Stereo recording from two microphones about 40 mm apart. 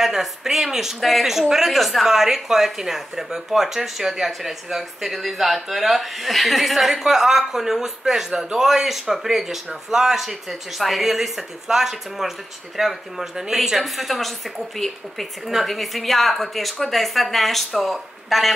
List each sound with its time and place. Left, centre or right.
0.0 s a woman's voice: centre
15.4 s a woman's voice: centre